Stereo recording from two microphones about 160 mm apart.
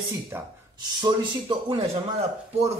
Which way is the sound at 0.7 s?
25° right (ahead or behind).